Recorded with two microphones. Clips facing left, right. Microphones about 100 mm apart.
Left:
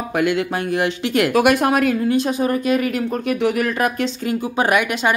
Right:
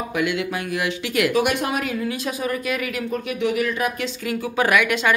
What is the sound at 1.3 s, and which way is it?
Speech, 55° left (ahead or behind).